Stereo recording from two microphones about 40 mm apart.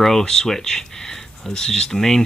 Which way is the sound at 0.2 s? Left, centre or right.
Centre.